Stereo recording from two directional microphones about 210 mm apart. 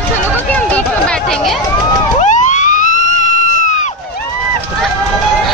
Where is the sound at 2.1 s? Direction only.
35° left (ahead or behind).